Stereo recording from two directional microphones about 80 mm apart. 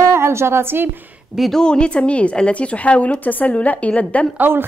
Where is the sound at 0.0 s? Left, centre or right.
Right.